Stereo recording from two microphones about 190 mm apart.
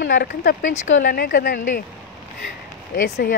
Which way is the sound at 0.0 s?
50° left (ahead or behind).